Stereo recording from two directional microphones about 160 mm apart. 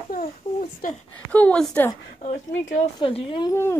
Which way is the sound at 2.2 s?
45° left (ahead or behind).